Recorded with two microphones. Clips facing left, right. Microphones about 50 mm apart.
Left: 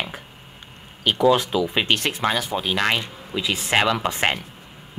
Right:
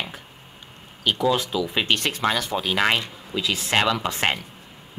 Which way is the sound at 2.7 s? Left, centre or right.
Centre.